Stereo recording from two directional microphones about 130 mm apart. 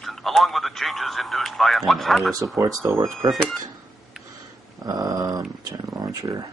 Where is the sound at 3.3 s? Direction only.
10° left (ahead or behind).